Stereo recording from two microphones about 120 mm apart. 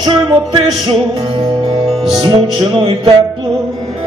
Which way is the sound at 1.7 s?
45° right (ahead or behind).